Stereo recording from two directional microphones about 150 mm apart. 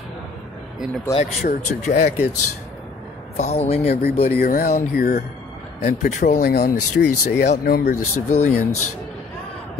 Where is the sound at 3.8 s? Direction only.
90° left.